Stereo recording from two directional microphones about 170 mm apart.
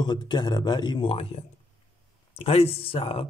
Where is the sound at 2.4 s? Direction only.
35° left (ahead or behind).